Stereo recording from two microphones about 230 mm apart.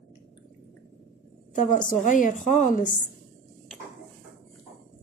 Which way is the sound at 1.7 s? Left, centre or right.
Left.